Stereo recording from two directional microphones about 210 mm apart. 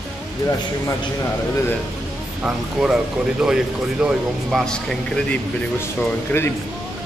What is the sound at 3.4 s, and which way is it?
Speech, 5° right (ahead or behind).